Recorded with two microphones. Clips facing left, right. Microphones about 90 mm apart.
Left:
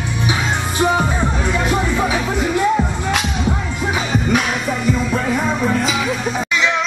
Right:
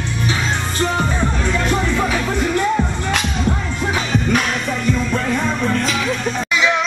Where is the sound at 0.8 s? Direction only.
10° left (ahead or behind).